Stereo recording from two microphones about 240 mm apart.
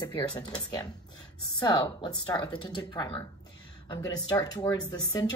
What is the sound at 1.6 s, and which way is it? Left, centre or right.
Speech, centre.